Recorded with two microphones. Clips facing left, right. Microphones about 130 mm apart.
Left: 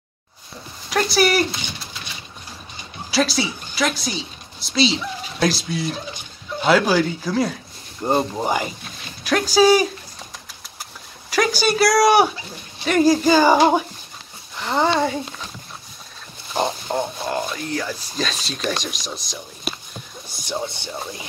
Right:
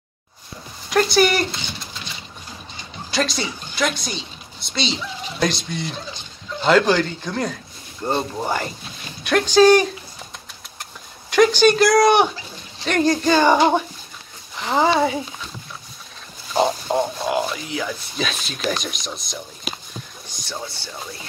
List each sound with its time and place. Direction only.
0.8 s speech: centre (ahead or behind)
3.1 s a woman's voice: 5° left (ahead or behind)
10.8 s a sound: 5° left (ahead or behind)
12.8 s speech: 5° left (ahead or behind)
16.5 s speech: 5° right (ahead or behind)
20.4 s speech: 20° left (ahead or behind)